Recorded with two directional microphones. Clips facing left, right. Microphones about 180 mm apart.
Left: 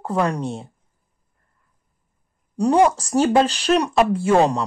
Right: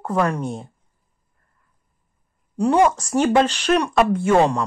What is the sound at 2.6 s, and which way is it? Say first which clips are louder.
Speech: left 1 dB; 35° left (ahead or behind).